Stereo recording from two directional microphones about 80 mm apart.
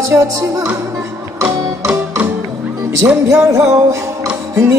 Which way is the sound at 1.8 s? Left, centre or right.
Right.